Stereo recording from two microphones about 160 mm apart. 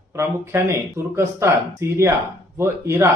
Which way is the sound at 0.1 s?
15° right (ahead or behind).